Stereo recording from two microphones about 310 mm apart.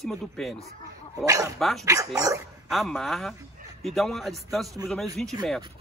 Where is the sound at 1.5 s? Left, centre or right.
Centre.